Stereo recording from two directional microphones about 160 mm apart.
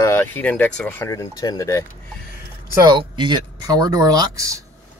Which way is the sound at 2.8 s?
30° right (ahead or behind).